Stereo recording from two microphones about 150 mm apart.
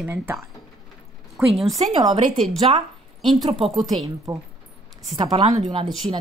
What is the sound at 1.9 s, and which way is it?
Speech, 35° right (ahead or behind).